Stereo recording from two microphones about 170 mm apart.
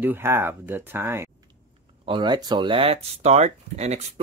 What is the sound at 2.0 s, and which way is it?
Speech, 25° right (ahead or behind).